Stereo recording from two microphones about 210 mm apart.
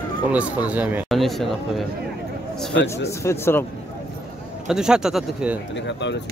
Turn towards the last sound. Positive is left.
turn(degrees=55)  # may be behind; listen again after turning